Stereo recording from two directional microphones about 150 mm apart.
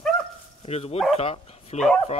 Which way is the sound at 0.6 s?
40° left (ahead or behind).